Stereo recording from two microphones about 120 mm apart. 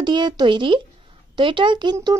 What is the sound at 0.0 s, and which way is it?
Speech, 40° right (ahead or behind).